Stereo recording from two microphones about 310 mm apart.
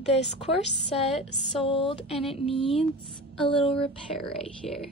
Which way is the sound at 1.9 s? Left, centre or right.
Centre.